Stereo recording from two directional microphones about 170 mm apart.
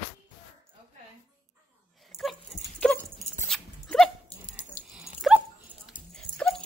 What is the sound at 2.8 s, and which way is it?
Dog, 10° left (ahead or behind).